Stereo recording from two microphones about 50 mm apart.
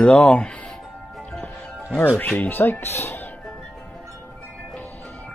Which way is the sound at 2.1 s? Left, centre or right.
Left.